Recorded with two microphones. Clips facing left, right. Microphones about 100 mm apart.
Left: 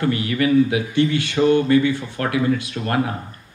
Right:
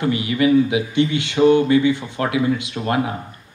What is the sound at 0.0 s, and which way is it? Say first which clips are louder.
Speech: right 2 dB; 20° right (ahead or behind).